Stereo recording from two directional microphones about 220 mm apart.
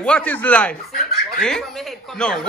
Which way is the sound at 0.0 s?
5° left (ahead or behind).